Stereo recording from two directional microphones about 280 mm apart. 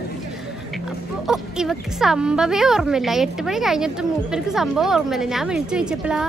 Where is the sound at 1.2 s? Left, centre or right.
Centre.